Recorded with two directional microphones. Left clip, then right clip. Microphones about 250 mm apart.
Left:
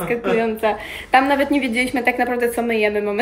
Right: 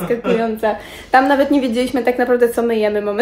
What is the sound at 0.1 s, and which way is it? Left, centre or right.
A woman's voice, centre.